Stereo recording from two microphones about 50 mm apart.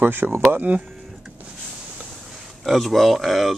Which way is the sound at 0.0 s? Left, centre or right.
Right.